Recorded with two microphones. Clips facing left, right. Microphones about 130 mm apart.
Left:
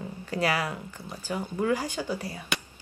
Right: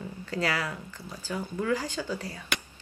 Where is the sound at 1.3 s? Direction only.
25° left (ahead or behind).